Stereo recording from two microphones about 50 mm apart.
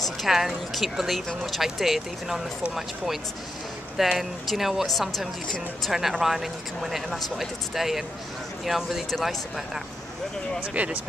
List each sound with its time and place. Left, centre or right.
0.2 s speech: centre
3.9 s speech: centre
10.7 s speech: right